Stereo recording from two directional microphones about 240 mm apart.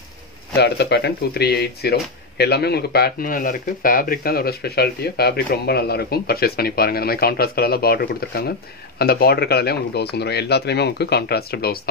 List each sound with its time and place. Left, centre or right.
0.6 s speech: left